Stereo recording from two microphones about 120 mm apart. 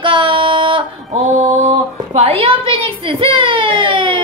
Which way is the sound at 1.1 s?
60° right (ahead or behind).